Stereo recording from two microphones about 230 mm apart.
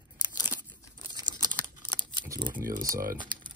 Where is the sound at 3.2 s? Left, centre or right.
Centre.